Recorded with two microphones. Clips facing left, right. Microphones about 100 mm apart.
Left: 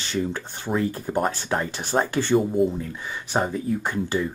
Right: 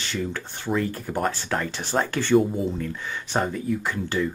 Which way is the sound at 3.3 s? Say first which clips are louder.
Left 1 dB; 15° left (ahead or behind).